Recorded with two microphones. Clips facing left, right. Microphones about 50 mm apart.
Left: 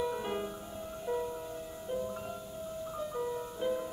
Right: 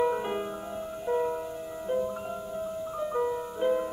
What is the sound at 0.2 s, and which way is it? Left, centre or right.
Music, right.